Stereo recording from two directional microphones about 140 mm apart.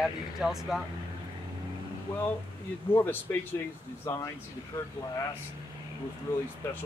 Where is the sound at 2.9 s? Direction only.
15° left (ahead or behind).